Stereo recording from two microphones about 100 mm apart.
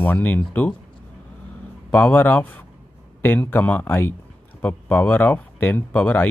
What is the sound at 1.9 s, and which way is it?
Speech, 20° left (ahead or behind).